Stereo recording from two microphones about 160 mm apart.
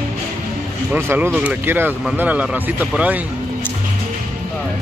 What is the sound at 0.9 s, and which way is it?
Speech, 15° right (ahead or behind).